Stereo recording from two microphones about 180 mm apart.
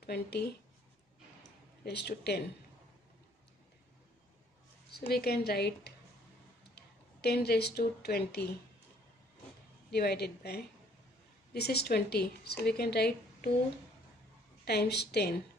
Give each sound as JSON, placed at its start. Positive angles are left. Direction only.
{"t": 0.0, "sound": "speech", "side_deg": 65}
{"t": 1.9, "sound": "speech", "side_deg": 65}
{"t": 4.9, "sound": "speech", "side_deg": 60}
{"t": 9.8, "sound": "speech", "side_deg": 65}
{"t": 14.6, "sound": "speech", "side_deg": 65}